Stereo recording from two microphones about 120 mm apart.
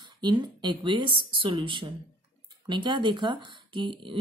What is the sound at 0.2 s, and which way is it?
Speech, 35° right (ahead or behind).